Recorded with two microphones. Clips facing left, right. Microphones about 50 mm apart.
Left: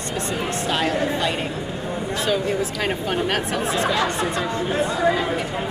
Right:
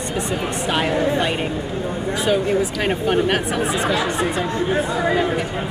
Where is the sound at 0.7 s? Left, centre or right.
Right.